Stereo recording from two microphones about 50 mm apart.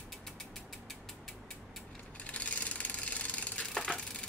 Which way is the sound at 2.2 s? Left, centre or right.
Left.